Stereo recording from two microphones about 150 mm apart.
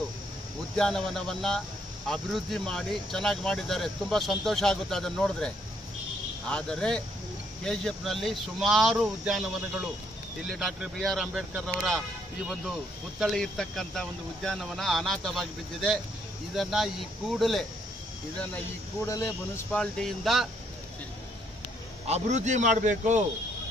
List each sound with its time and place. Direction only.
0.7 s speech: 5° left (ahead or behind)
13.2 s speech: centre (ahead or behind)
19.0 s speech: 20° left (ahead or behind)
19.7 s speech: 5° left (ahead or behind)
22.0 s a man's voice: 50° right (ahead or behind)